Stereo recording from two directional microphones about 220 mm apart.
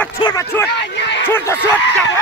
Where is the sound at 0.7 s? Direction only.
50° left (ahead or behind).